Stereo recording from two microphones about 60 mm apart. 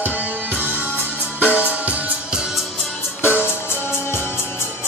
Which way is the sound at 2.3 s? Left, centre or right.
Centre.